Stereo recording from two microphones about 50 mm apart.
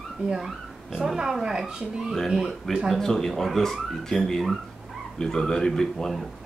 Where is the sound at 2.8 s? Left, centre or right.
Centre.